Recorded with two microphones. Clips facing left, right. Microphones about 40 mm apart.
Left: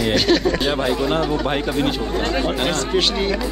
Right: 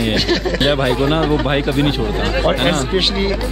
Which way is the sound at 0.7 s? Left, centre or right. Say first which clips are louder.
Right 3 dB; right.